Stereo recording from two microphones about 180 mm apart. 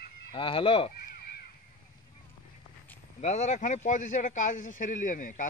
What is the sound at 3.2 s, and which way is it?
Speech, 40° left (ahead or behind).